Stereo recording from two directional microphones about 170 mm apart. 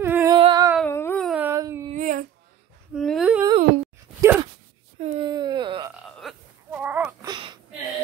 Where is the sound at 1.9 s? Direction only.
50° right (ahead or behind).